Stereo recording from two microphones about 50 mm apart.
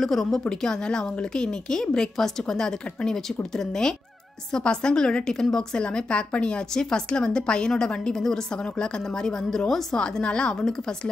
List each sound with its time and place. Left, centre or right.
0.0 s a woman's voice: centre
10.2 s speech: centre